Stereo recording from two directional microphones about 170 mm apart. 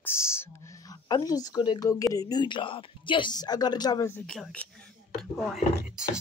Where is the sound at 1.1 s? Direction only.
20° left (ahead or behind).